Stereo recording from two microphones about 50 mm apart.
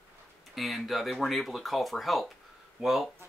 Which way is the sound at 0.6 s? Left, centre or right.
Centre.